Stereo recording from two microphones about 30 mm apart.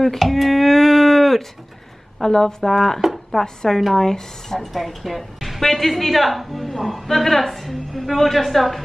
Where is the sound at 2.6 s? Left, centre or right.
Centre.